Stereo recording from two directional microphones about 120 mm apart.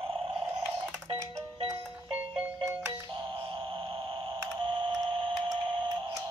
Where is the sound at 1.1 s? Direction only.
30° right (ahead or behind).